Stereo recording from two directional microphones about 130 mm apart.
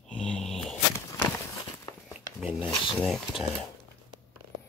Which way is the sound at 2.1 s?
5° right (ahead or behind).